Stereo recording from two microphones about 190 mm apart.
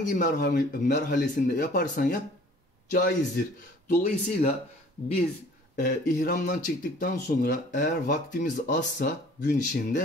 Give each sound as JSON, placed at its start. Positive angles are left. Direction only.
{"t": 0.0, "sound": "speech", "side_deg": 45}
{"t": 5.8, "sound": "speech", "side_deg": 50}